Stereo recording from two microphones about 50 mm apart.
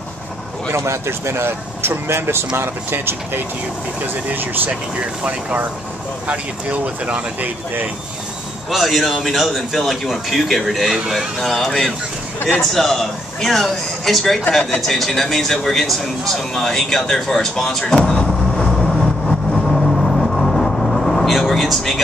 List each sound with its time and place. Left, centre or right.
0.7 s speech: right
4.0 s speech: right
8.6 s a man's voice: centre
18.7 s vehicle: centre